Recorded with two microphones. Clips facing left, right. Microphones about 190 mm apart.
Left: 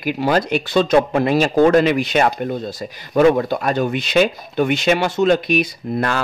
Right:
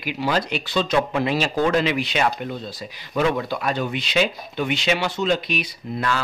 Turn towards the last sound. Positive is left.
turn(degrees=50)  # may be behind; listen again after turning